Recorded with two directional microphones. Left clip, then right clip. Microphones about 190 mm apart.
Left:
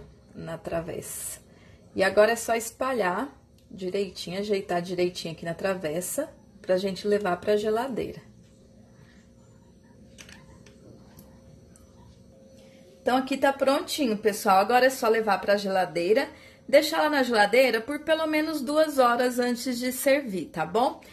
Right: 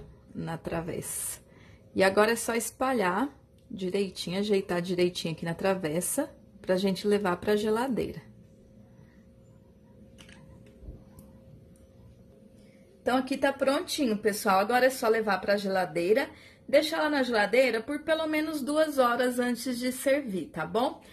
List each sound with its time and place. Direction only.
0.7 s a woman's voice: 20° right (ahead or behind)
13.0 s a woman's voice: centre (ahead or behind)